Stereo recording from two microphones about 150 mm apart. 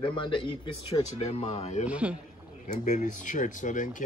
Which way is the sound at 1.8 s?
10° right (ahead or behind).